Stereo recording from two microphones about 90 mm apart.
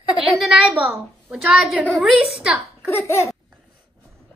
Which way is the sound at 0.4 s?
5° right (ahead or behind).